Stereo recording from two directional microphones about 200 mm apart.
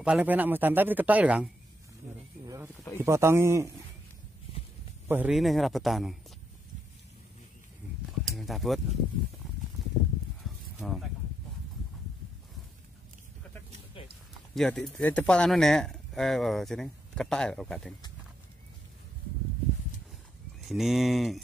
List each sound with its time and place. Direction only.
0.0 s speech: 5° right (ahead or behind)
5.0 s speech: 10° right (ahead or behind)
8.4 s speech: centre (ahead or behind)
10.4 s a sound: centre (ahead or behind)
14.0 s a sound: 25° left (ahead or behind)
14.5 s speech: centre (ahead or behind)
20.6 s speech: centre (ahead or behind)